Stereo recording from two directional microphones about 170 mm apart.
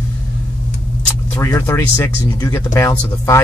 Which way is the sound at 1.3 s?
15° left (ahead or behind).